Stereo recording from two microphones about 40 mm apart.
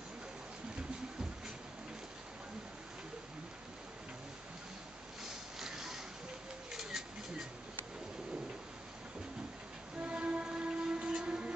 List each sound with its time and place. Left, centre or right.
5.6 s a sound: centre
6.7 s bird: centre
9.9 s train: right